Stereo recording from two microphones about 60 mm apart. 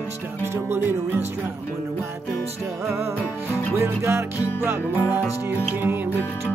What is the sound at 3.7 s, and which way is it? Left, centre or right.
Music, right.